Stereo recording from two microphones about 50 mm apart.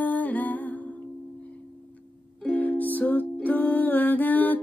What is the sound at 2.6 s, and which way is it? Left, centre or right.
Music, left.